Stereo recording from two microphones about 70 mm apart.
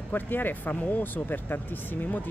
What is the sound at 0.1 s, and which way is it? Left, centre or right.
Speech, left.